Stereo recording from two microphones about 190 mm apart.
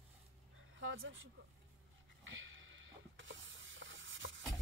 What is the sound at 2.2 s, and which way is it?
Hiss, 90° right.